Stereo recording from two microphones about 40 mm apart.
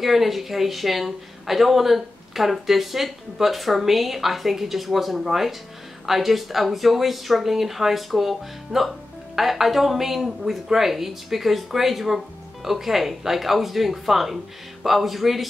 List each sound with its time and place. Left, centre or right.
0.0 s speech: centre